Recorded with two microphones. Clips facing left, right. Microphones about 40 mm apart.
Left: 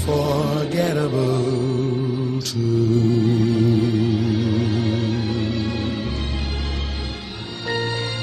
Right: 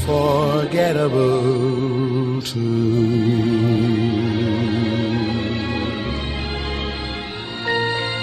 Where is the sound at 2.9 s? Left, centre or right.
Right.